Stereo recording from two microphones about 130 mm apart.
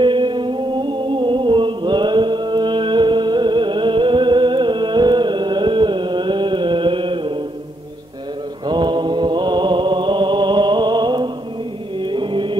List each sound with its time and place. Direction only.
0.0 s music: 40° right (ahead or behind)
8.6 s mantra: 35° right (ahead or behind)
12.0 s music: 40° right (ahead or behind)